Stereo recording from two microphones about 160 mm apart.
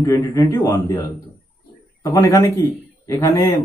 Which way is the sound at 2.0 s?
25° left (ahead or behind).